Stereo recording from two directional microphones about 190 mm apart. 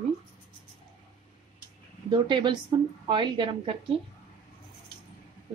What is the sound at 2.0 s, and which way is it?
A woman's voice, 25° right (ahead or behind).